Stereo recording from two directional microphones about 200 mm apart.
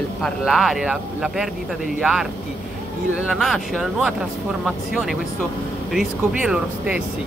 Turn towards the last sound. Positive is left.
turn(degrees=-5)  # may be behind; listen again after turning